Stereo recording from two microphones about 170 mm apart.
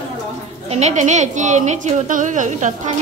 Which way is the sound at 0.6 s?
40° right (ahead or behind).